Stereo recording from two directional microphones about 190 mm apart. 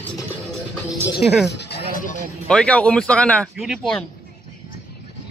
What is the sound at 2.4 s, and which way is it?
Speech, 5° left (ahead or behind).